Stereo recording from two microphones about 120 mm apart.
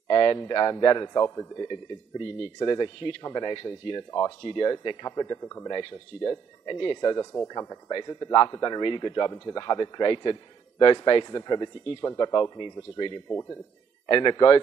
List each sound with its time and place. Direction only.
0.1 s a sound: 35° left (ahead or behind)
0.5 s speech: 35° left (ahead or behind)
13.3 s a man's voice: 20° left (ahead or behind)
14.0 s speech: 40° left (ahead or behind)